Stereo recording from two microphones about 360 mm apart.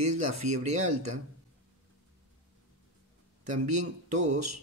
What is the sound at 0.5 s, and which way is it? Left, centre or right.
Speech, centre.